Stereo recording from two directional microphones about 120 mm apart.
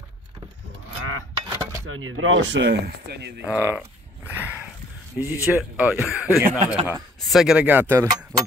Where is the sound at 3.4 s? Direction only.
15° right (ahead or behind).